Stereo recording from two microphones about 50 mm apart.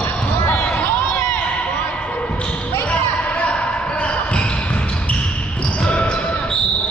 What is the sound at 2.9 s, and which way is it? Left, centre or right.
Basketball bounce, left.